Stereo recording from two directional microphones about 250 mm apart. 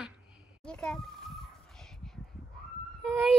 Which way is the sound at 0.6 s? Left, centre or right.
Centre.